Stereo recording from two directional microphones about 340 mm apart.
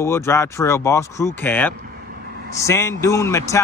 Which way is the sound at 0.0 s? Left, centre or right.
Centre.